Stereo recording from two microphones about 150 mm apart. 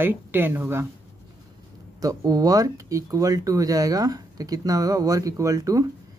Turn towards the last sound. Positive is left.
turn(degrees=-20)  # may be behind; listen again after turning